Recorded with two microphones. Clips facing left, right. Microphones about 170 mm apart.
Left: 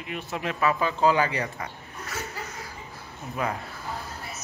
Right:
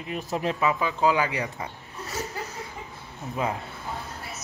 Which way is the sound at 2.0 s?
35° right (ahead or behind).